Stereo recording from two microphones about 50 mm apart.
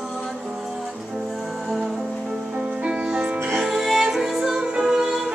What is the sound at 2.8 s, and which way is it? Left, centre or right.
Music, centre.